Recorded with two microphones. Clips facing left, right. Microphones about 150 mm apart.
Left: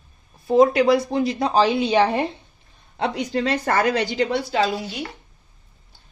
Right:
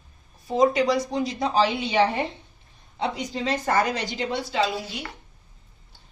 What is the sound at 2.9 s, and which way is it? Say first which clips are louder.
Speech: left 5 dB; 70° left (ahead or behind).